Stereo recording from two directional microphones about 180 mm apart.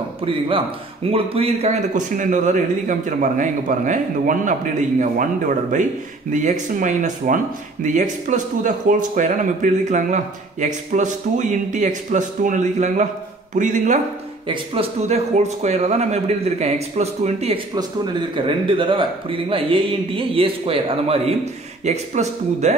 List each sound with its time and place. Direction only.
1.1 s a man's voice: 30° right (ahead or behind)
14.5 s speech: 30° right (ahead or behind)